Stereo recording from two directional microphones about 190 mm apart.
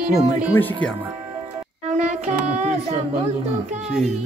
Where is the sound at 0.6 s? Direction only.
10° left (ahead or behind).